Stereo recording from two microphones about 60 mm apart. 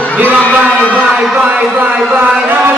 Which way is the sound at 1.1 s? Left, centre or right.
Centre.